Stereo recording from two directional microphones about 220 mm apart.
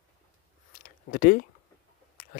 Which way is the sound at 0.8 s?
40° left (ahead or behind).